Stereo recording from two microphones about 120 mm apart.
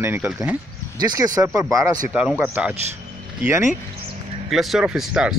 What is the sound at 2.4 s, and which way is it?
A man's voice, 10° right (ahead or behind).